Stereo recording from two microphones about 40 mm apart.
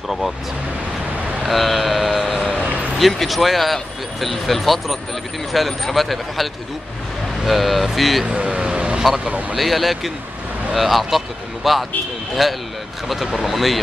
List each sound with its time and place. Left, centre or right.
1.4 s a sound: centre
3.0 s speech: centre
8.3 s vehicle: right
9.6 s speech: centre